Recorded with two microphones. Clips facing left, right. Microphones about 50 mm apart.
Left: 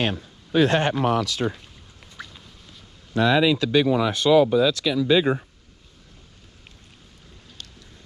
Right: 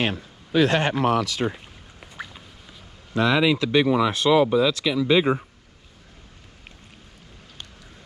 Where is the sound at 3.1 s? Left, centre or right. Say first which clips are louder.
Left 1 dB; right.